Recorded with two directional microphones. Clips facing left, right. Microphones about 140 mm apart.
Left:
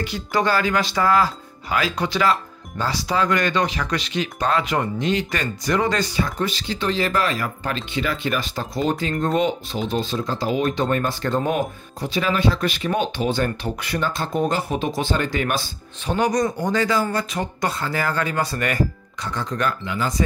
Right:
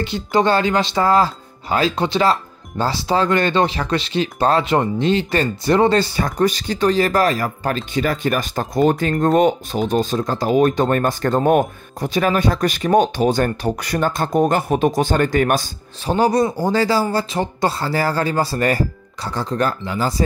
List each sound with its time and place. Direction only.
0.0 s speech: 25° right (ahead or behind)
6.1 s speech: 45° right (ahead or behind)
16.1 s speech: 30° right (ahead or behind)